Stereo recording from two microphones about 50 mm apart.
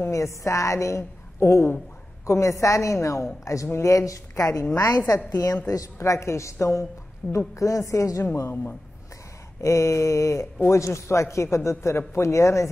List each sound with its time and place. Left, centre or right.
0.1 s a woman's voice: left
2.2 s a woman's voice: left
7.3 s a woman's voice: left
9.6 s a woman's voice: left